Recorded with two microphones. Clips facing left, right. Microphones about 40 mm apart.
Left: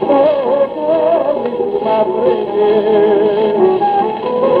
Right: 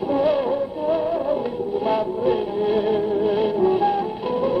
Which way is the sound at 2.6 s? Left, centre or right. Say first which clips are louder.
Left 10 dB; left.